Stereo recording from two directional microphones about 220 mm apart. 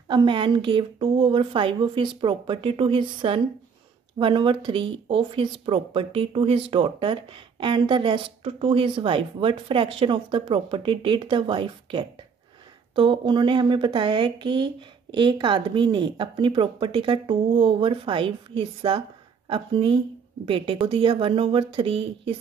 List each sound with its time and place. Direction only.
0.1 s speech: 20° right (ahead or behind)